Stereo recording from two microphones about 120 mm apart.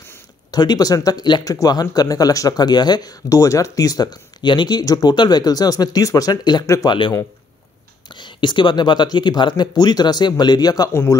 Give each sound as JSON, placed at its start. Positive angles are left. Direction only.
{"t": 0.5, "sound": "speech", "side_deg": 35}
{"t": 6.6, "sound": "speech", "side_deg": 25}
{"t": 6.9, "sound": "speech", "side_deg": 40}
{"t": 10.9, "sound": "speech", "side_deg": 20}